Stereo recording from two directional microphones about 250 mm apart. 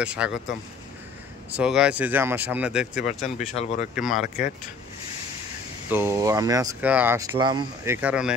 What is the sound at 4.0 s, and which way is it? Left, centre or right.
Speech, centre.